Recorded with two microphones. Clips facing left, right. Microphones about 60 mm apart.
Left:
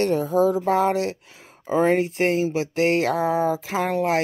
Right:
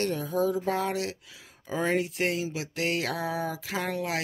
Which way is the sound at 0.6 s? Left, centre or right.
Left.